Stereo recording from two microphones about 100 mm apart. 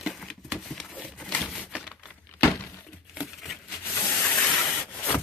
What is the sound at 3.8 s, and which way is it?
Rub, 30° left (ahead or behind).